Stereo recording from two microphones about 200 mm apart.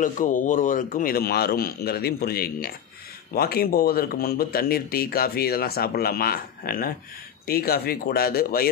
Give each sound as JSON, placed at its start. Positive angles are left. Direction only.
{"t": 0.0, "sound": "speech", "side_deg": 40}